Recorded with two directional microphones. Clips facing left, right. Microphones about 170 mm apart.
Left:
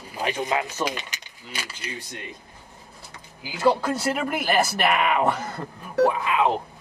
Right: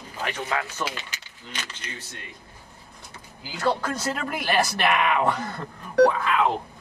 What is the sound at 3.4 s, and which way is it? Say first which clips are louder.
Speech: left 4 dB; 10° left (ahead or behind).